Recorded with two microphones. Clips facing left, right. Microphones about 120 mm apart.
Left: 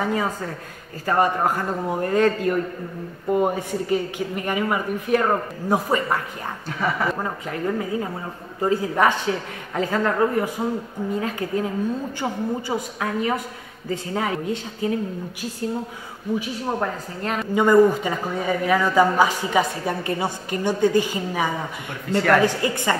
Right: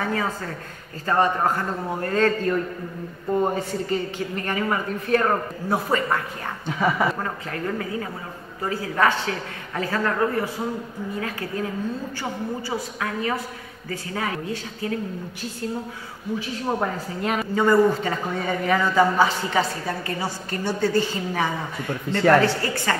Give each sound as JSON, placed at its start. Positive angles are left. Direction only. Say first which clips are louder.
{"t": 0.0, "sound": "speech", "louder": "left 2 dB", "side_deg": 15}
{"t": 6.8, "sound": "speech", "louder": "right 2 dB", "side_deg": -10}
{"t": 7.2, "sound": "a woman's voice", "louder": "left 2 dB", "side_deg": 15}
{"t": 16.6, "sound": "speech", "louder": "even", "side_deg": -5}
{"t": 17.6, "sound": "speech", "louder": "left 3 dB", "side_deg": 15}